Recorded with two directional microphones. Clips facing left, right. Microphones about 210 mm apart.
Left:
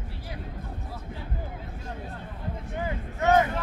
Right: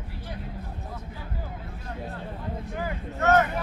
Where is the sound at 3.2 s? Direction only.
15° left (ahead or behind).